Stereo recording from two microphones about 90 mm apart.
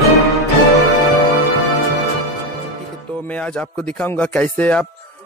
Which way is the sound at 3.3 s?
10° left (ahead or behind).